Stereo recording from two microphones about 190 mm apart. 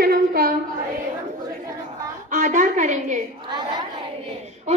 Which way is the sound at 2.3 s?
40° right (ahead or behind).